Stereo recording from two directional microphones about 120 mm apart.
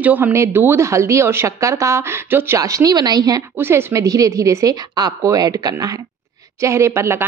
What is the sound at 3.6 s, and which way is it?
A woman's voice, 20° right (ahead or behind).